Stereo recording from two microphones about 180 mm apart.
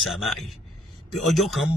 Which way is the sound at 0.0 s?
Centre (ahead or behind).